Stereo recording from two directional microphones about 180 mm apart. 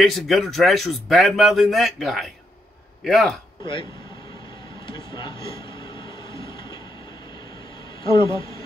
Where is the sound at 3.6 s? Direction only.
25° left (ahead or behind).